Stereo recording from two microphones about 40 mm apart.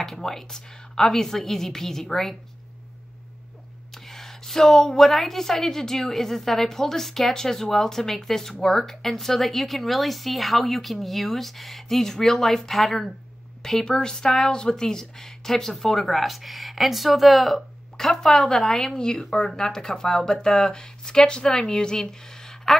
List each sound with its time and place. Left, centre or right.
0.0 s a woman's voice: centre
3.9 s a woman's voice: centre
13.8 s a woman's voice: centre
18.0 s a woman's voice: centre